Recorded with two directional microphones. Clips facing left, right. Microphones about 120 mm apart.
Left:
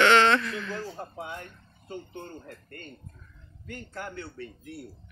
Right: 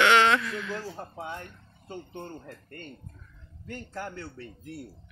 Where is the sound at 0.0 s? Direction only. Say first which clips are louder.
Left 1 dB; 10° right (ahead or behind).